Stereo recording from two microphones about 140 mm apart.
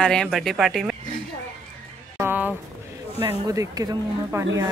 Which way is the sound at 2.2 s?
15° right (ahead or behind).